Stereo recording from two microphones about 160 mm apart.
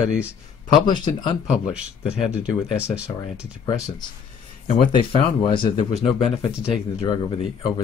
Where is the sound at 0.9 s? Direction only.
30° left (ahead or behind).